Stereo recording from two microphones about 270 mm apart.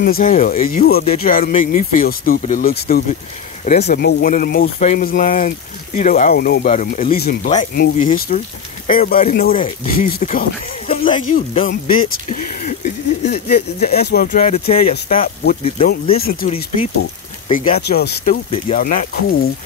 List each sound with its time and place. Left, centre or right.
0.0 s speech: left
10.9 s speech: centre